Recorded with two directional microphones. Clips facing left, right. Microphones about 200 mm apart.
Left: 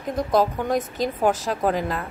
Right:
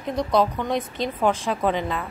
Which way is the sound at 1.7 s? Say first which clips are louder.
Left 1 dB; 5° left (ahead or behind).